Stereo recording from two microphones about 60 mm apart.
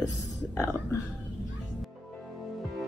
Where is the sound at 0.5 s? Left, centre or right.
Left.